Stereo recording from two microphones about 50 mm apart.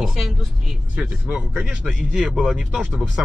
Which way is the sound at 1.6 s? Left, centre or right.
Right.